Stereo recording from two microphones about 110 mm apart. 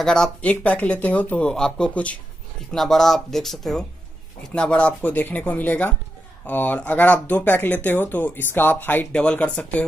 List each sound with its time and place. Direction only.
0.0 s speech: 5° left (ahead or behind)